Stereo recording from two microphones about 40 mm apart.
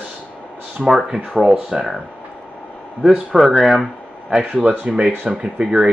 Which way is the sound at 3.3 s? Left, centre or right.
Centre.